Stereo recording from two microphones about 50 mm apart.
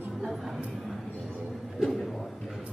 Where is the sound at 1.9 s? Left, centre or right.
Centre.